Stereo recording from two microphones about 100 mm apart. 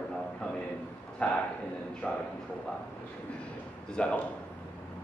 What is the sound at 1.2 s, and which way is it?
Speech, 10° left (ahead or behind).